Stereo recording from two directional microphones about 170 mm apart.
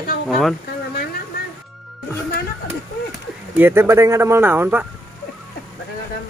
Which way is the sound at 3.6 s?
15° right (ahead or behind).